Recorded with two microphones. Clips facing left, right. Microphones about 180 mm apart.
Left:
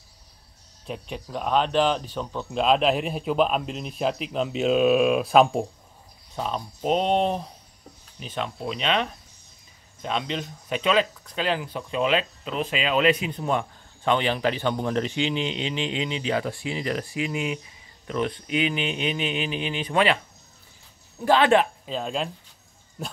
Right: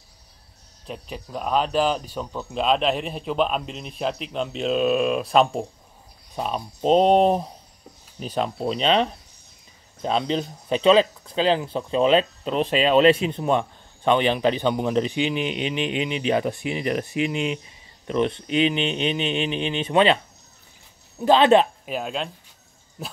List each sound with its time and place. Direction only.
0.8 s speech: centre (ahead or behind)
6.3 s speech: 15° right (ahead or behind)
6.8 s a man's voice: 35° right (ahead or behind)
21.2 s speech: 20° right (ahead or behind)
21.9 s speech: centre (ahead or behind)